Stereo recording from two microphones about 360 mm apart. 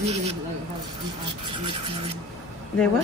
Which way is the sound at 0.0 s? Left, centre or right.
Centre.